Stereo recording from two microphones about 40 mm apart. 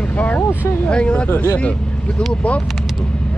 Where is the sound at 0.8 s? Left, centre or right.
Left.